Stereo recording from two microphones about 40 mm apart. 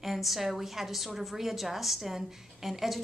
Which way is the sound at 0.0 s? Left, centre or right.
Centre.